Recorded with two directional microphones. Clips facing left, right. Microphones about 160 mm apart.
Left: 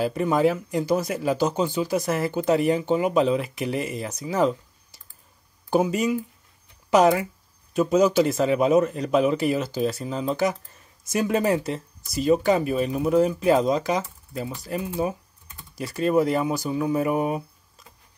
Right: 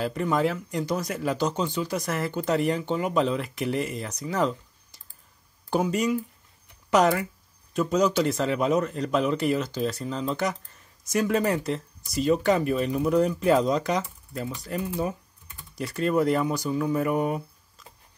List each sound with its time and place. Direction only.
0.0 s speech: 10° left (ahead or behind)
5.7 s speech: 5° left (ahead or behind)
7.7 s speech: 5° left (ahead or behind)